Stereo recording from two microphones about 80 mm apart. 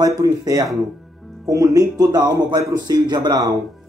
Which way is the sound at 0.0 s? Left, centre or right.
Right.